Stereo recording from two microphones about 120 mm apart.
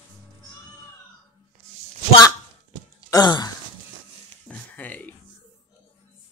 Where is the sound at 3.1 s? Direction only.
35° left (ahead or behind).